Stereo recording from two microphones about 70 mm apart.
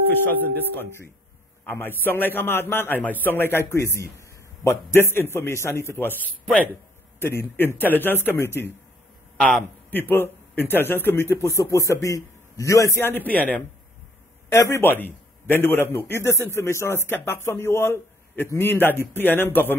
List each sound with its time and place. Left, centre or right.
0.1 s speech: left
1.7 s a man's voice: left
3.5 s a man's voice: left
9.8 s a man's voice: left
13.0 s speech: left
14.5 s a man's voice: left